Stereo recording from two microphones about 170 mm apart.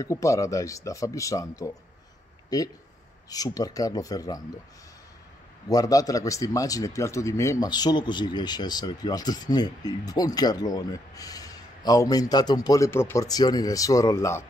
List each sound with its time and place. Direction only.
0.0 s a man's voice: 20° left (ahead or behind)
5.7 s a man's voice: 20° left (ahead or behind)